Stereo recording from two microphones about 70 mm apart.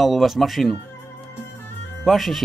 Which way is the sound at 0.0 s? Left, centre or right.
Centre.